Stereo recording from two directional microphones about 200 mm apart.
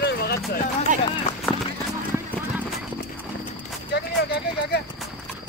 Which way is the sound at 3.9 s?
55° left (ahead or behind).